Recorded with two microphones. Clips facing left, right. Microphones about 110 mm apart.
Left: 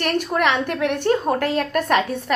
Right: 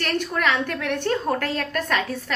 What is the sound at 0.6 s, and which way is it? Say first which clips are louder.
A woman's voice: left 5 dB; 15° left (ahead or behind).